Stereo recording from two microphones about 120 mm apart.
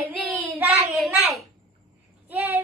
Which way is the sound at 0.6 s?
15° right (ahead or behind).